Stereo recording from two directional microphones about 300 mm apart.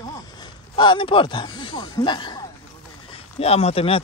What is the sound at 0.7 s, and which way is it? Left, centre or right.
A man's voice, centre.